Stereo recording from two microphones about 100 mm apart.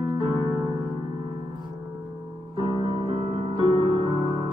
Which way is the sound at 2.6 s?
65° left (ahead or behind).